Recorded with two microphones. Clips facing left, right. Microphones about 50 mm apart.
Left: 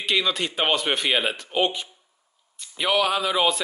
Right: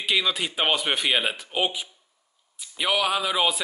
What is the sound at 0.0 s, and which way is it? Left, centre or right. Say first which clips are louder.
A man's voice: left 1 dB; centre.